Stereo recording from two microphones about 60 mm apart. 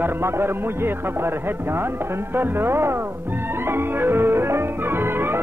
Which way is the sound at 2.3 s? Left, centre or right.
Right.